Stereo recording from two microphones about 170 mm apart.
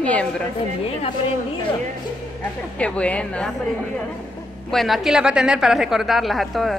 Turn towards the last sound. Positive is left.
turn(degrees=0)  # may be behind; listen again after turning